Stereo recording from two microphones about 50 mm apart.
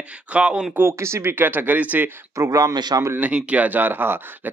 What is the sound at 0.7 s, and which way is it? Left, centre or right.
Speech, right.